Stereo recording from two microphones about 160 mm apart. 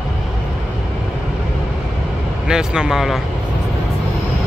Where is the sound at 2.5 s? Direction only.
5° right (ahead or behind).